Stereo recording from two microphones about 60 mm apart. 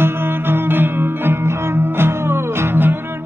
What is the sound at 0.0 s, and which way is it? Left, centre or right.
Music, right.